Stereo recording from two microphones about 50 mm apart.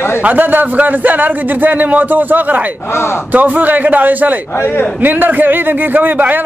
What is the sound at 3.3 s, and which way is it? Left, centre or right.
A man's voice, right.